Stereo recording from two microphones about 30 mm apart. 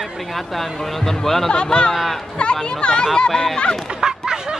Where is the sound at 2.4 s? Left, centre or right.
Left.